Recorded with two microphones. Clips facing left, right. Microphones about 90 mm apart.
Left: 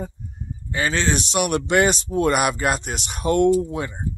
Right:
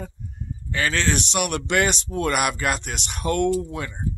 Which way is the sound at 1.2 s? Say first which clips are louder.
Left 3 dB; 35° left (ahead or behind).